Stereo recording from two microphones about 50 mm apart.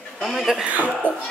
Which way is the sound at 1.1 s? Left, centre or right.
Right.